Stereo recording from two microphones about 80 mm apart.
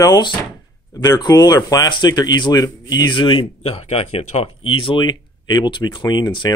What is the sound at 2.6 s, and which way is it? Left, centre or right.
Speech, left.